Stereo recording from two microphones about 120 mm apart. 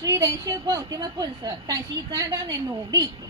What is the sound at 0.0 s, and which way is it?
A woman's voice, 30° right (ahead or behind).